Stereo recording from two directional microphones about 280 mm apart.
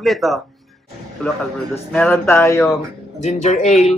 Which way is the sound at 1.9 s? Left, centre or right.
Centre.